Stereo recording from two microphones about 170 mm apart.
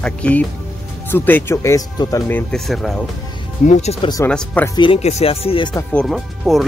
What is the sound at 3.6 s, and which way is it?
Speech, 40° left (ahead or behind).